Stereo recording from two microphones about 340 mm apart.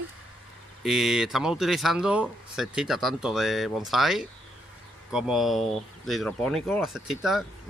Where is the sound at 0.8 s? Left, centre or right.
Centre.